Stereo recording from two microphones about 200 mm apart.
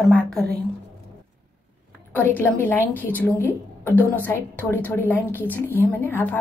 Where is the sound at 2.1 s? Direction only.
10° left (ahead or behind).